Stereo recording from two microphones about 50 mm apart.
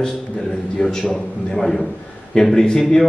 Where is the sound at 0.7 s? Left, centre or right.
Centre.